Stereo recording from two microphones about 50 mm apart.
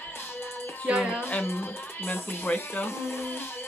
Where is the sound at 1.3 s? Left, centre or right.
Left.